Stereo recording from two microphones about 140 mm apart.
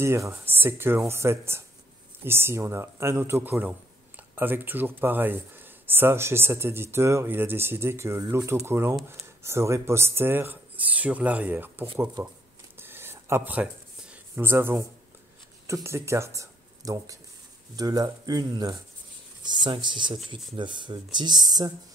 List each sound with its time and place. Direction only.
0.0 s speech: 20° right (ahead or behind)
12.7 s a sound: 15° right (ahead or behind)
15.6 s speech: 20° right (ahead or behind)